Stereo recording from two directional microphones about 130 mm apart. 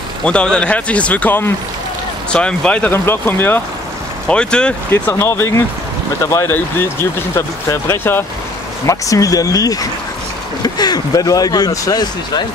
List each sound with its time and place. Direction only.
0.2 s speech: 10° left (ahead or behind)
4.9 s speech: 20° left (ahead or behind)